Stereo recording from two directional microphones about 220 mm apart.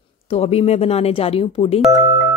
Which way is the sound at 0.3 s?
30° left (ahead or behind).